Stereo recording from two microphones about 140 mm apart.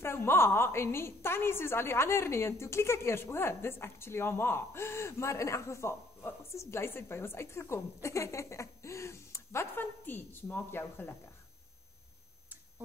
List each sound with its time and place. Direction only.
0.0 s a woman's voice: 15° left (ahead or behind)